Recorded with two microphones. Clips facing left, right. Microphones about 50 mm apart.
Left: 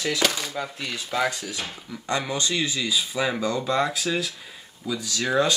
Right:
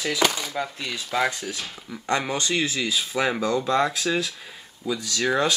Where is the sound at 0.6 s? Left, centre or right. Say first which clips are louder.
Right 1 dB; centre.